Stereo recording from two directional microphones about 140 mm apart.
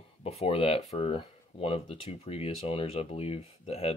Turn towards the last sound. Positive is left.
turn(degrees=45)  # may be behind; listen again after turning